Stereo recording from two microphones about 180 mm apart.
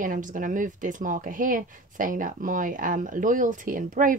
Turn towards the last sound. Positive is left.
turn(degrees=-50)  # may be behind; listen again after turning